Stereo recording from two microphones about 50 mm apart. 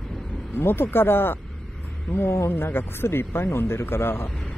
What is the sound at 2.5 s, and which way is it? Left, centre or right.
Speech, left.